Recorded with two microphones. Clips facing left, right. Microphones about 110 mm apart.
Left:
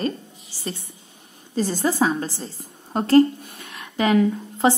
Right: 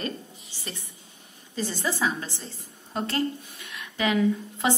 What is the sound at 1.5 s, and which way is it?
A woman's voice, 40° left (ahead or behind).